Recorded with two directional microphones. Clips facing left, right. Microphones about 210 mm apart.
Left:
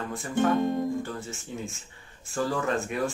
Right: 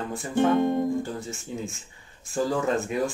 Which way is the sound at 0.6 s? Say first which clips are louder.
Right 3 dB; 25° right (ahead or behind).